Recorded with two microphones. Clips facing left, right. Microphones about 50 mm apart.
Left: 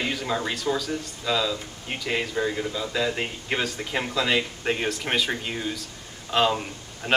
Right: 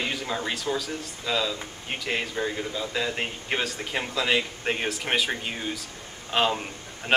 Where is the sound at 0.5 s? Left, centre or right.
Centre.